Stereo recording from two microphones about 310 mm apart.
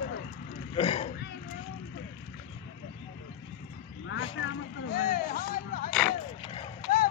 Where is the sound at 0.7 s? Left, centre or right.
Centre.